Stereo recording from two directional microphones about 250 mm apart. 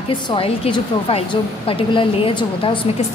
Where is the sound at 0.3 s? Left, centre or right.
Left.